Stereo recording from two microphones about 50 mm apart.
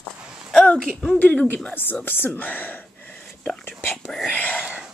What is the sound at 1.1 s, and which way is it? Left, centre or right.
Speech, left.